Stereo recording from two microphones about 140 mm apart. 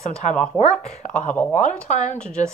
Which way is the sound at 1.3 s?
10° left (ahead or behind).